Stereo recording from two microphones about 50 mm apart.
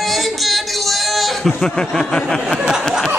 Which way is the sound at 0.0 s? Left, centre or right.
Centre.